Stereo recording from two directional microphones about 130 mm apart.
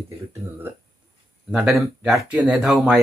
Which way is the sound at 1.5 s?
5° right (ahead or behind).